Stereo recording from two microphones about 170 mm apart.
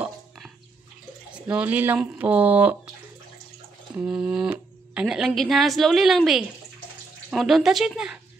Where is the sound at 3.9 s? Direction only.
5° right (ahead or behind).